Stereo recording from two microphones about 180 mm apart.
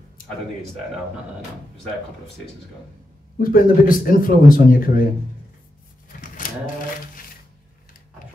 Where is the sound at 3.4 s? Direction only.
50° left (ahead or behind).